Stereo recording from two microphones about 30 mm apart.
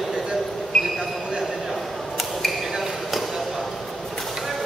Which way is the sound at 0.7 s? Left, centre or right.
Centre.